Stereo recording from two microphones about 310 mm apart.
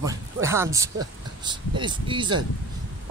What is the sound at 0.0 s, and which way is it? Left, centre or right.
Speech, centre.